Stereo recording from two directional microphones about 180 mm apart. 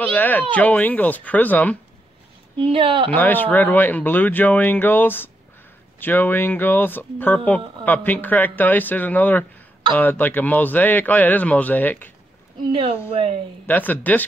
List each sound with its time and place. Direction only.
0.0 s speech: 10° left (ahead or behind)
2.5 s speech: 30° right (ahead or behind)
3.1 s speech: 10° left (ahead or behind)
13.1 s speech: 30° right (ahead or behind)
13.7 s speech: 10° left (ahead or behind)